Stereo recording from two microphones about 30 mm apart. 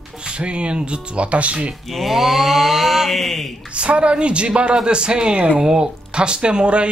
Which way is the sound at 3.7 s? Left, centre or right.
Right.